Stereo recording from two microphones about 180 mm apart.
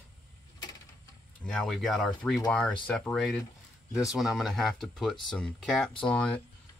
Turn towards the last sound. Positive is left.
turn(degrees=5)  # may be behind; listen again after turning